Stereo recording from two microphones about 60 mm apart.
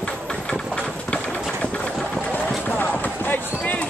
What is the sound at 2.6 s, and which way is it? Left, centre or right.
Run, left.